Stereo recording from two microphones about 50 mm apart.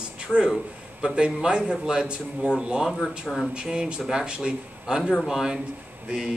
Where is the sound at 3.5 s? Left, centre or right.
Centre.